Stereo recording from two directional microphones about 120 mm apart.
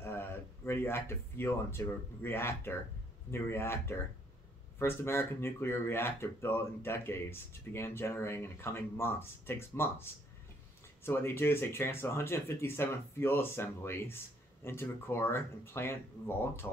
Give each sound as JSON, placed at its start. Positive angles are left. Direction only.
{"t": 0.0, "sound": "speech", "side_deg": 20}
{"t": 11.1, "sound": "speech", "side_deg": 20}